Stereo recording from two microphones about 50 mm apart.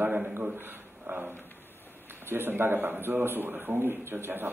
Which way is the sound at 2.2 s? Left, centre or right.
Right.